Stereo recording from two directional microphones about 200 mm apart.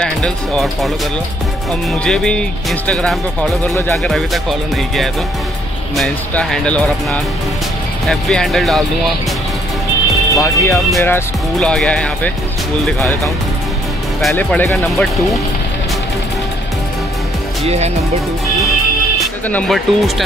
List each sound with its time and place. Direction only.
0.0 s speech: centre (ahead or behind)
10.3 s speech: 15° left (ahead or behind)
14.2 s speech: 5° left (ahead or behind)
17.6 s speech: 35° right (ahead or behind)
19.1 s speech: 5° left (ahead or behind)